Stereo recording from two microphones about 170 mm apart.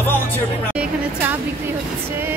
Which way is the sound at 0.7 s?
10° right (ahead or behind).